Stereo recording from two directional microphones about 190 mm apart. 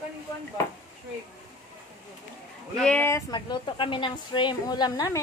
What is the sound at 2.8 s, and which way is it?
Speech, 10° left (ahead or behind).